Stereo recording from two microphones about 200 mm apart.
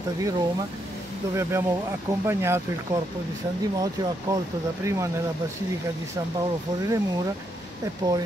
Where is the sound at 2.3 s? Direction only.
10° right (ahead or behind).